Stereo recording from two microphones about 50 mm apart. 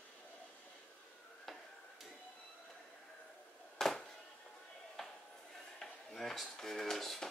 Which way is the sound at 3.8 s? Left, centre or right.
Centre.